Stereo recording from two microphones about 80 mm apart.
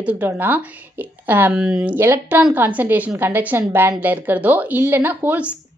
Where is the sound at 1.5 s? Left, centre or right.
Centre.